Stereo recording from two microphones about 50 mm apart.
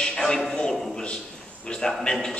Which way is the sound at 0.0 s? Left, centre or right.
Centre.